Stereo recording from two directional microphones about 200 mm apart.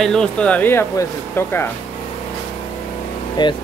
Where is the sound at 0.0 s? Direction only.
5° left (ahead or behind).